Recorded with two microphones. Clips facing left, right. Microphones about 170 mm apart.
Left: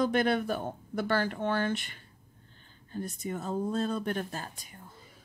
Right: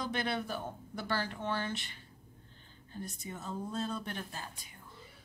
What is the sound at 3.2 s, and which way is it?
Speech, 55° left (ahead or behind).